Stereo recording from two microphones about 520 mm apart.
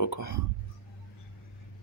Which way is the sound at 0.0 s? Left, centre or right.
Left.